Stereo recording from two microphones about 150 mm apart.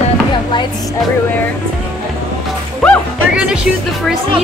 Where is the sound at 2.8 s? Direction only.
5° left (ahead or behind).